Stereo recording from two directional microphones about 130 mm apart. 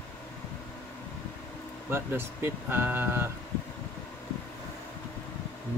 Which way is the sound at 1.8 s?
20° right (ahead or behind).